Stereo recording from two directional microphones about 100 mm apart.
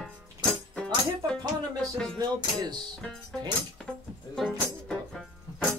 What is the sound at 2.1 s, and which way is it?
Music, 40° right (ahead or behind).